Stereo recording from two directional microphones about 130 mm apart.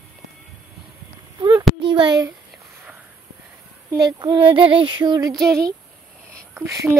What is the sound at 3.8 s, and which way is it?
Female singing, 35° right (ahead or behind).